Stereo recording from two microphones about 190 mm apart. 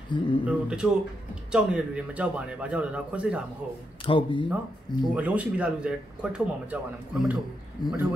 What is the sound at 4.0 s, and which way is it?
Speech, 25° left (ahead or behind).